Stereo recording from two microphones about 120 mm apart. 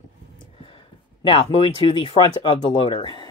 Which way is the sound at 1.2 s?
50° left (ahead or behind).